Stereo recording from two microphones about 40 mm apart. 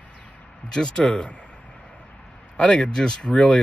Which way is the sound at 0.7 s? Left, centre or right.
Left.